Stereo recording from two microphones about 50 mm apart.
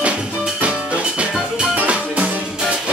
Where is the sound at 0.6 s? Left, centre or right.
Right.